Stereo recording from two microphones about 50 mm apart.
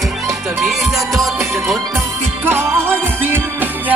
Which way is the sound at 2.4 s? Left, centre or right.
Right.